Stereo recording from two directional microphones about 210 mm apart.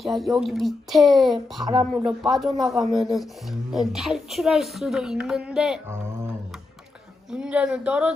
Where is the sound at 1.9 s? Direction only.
Centre (ahead or behind).